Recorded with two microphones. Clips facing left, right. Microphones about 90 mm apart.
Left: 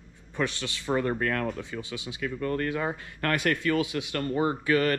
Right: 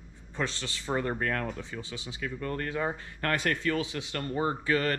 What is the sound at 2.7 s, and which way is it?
Speech, 90° left.